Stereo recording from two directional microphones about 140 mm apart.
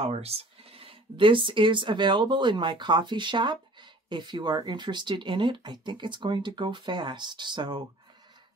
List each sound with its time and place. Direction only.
0.0 s speech: 45° right (ahead or behind)